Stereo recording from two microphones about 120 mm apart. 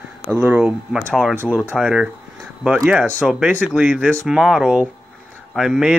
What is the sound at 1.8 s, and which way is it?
Speech, centre (ahead or behind).